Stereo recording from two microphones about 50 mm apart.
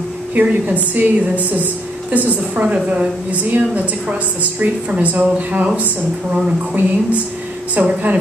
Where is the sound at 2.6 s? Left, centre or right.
Right.